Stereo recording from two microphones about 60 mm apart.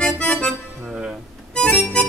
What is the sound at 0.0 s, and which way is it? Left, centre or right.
Music, centre.